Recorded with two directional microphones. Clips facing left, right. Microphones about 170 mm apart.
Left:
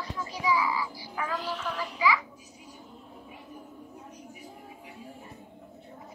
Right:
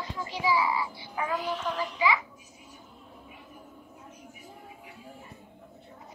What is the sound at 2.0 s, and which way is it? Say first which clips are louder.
Speech: even; 25° right (ahead or behind).